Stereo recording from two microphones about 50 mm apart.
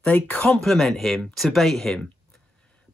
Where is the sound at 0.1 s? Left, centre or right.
Left.